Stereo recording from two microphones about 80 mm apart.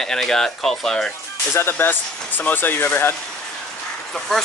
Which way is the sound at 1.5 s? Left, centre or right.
Left.